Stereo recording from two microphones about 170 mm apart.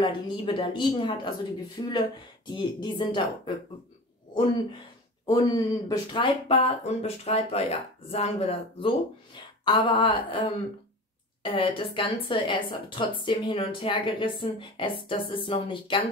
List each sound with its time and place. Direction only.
0.0 s a woman's voice: 25° left (ahead or behind)
5.2 s speech: 25° left (ahead or behind)
11.4 s a woman's voice: 30° left (ahead or behind)